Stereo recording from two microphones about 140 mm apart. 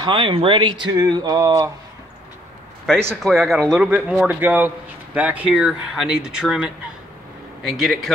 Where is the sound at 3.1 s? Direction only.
Centre (ahead or behind).